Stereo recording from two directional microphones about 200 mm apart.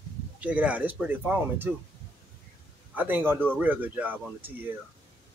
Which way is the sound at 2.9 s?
10° right (ahead or behind).